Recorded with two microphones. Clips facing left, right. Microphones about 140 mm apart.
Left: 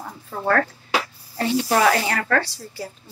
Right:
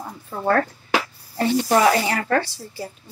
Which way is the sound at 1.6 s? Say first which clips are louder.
Right 1 dB; 40° right (ahead or behind).